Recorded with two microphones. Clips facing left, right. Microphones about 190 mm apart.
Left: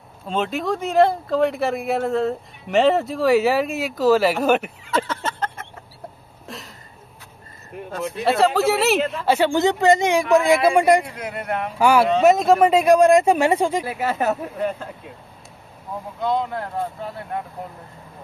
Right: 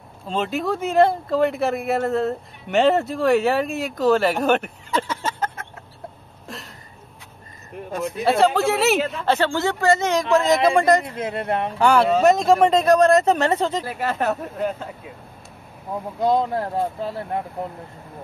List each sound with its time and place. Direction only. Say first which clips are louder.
0.3 s speech: even; centre (ahead or behind)
5.0 s a sound: even; 10° right (ahead or behind)
6.4 s a sound: even; centre (ahead or behind)
8.0 s a man's voice: right 1 dB; centre (ahead or behind)
11.1 s speech: right 3 dB; 25° right (ahead or behind)
11.8 s a man's voice: left 1 dB; 10° left (ahead or behind)
16.2 s speech: right 3 dB; 40° right (ahead or behind)